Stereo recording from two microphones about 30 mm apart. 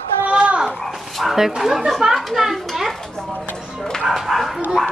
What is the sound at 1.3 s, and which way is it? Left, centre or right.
Speech, centre.